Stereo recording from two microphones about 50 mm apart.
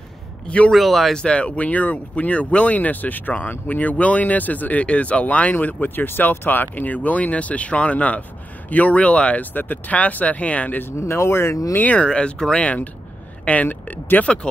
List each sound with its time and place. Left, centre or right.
0.7 s speech: centre
1.1 s speech: centre
11.0 s speech: left
11.7 s speech: left
12.0 s speech: left
12.6 s speech: left
14.2 s speech: left